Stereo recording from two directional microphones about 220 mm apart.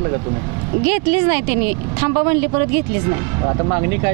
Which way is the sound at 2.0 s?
25° right (ahead or behind).